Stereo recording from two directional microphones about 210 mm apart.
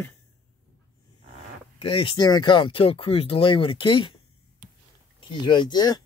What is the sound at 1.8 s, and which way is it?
Speech, 25° left (ahead or behind).